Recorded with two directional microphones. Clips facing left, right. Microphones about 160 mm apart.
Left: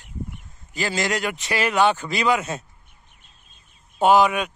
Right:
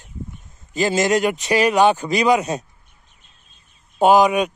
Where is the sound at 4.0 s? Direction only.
15° right (ahead or behind).